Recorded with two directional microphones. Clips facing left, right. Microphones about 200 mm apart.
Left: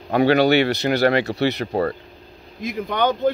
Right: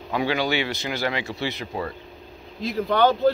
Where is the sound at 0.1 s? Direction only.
65° left (ahead or behind).